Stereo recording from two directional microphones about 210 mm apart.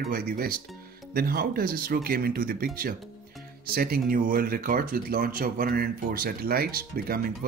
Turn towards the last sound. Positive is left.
turn(degrees=-45)  # may be behind; listen again after turning